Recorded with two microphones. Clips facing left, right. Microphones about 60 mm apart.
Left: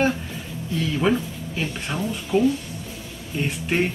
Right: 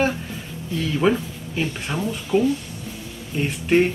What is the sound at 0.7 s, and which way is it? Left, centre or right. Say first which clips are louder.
Speech: right 1 dB; centre.